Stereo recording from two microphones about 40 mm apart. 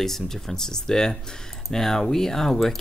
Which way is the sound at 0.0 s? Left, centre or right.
Centre.